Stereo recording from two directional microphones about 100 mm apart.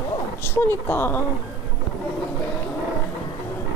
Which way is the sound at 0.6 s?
20° left (ahead or behind).